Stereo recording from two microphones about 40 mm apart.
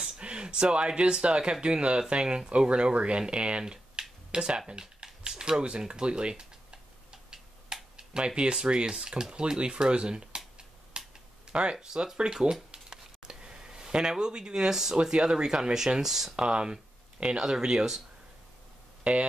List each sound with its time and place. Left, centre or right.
0.2 s speech: right
4.3 s computer keyboard: right
5.4 s tick-tock: right
8.4 s speech: right
10.9 s finger snapping: right
11.7 s speech: centre
12.9 s a sound: centre
15.0 s speech: centre
16.3 s speech: right